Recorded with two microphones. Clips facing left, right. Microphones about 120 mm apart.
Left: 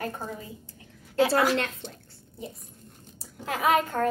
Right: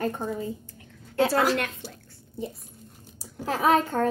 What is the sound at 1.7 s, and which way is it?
Speech, 5° right (ahead or behind).